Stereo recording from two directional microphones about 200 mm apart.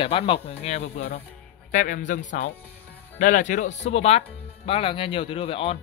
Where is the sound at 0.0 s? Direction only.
25° left (ahead or behind).